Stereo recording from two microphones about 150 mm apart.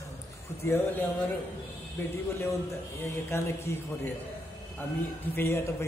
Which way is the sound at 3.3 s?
15° left (ahead or behind).